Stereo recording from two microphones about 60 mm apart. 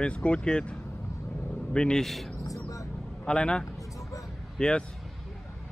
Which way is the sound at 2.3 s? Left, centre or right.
Left.